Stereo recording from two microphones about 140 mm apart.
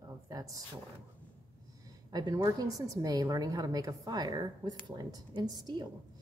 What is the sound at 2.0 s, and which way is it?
Speech, 30° right (ahead or behind).